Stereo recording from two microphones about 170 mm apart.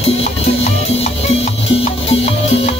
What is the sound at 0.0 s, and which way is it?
Music, 35° left (ahead or behind).